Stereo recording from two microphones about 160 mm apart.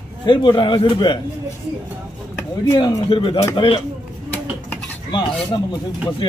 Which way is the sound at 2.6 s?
25° left (ahead or behind).